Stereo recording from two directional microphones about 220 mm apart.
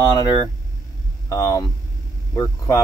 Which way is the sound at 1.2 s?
15° left (ahead or behind).